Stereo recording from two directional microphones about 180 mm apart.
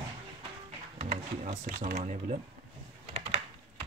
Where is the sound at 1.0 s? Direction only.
40° right (ahead or behind).